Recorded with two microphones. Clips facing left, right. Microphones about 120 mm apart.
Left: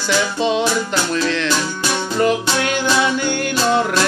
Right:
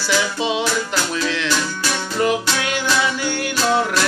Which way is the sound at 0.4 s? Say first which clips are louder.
Left 4 dB; 5° right (ahead or behind).